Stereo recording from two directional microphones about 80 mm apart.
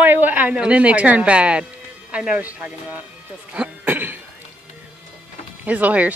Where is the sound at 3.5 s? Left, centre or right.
Centre.